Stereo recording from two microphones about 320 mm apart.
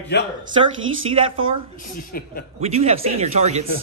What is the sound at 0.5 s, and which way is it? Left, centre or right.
Speech, centre.